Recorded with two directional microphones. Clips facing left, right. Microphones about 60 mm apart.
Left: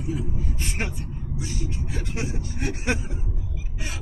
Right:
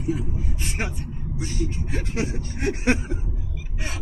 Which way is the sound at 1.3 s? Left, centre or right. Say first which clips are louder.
Right 3 dB; right.